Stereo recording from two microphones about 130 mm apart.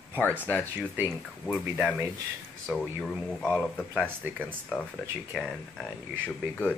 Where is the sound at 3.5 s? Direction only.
10° right (ahead or behind).